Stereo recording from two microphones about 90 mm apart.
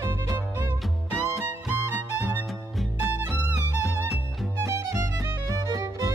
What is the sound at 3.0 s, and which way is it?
Music, 20° right (ahead or behind).